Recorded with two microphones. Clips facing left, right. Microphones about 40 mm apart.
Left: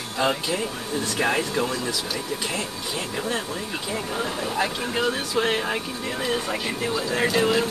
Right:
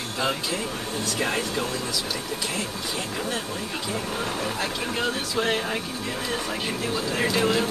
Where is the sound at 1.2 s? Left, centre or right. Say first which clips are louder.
Left 4 dB; centre.